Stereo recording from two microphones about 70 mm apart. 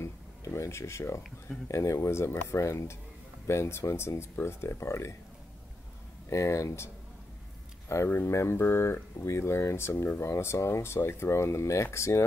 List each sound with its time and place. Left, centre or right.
0.0 s a sound: left
1.7 s speech: left
6.3 s speech: left
7.9 s speech: left